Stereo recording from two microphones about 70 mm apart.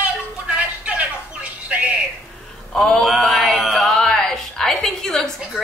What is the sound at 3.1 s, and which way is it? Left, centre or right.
A woman's voice, centre.